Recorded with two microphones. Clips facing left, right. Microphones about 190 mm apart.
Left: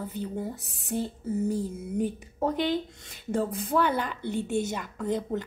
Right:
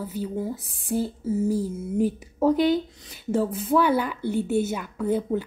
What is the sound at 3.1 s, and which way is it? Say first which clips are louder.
A woman's voice: right 4 dB; centre (ahead or behind).